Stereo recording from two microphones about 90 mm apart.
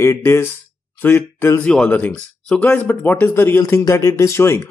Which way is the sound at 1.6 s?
5° left (ahead or behind).